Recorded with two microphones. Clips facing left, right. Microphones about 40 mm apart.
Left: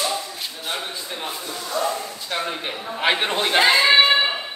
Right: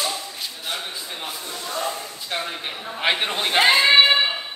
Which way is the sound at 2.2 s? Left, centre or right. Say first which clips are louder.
Left 1 dB; centre.